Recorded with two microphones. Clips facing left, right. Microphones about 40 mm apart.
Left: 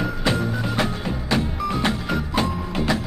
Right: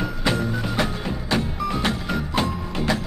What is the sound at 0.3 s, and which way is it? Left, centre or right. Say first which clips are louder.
Music: right 1 dB; centre.